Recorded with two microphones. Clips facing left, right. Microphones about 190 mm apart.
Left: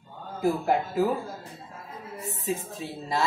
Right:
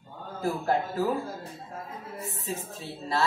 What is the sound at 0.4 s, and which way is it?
Speech, 15° left (ahead or behind).